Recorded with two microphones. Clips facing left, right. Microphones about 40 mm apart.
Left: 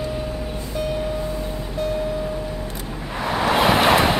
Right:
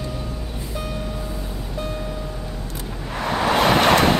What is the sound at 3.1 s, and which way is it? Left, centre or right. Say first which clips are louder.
Waves: even; centre.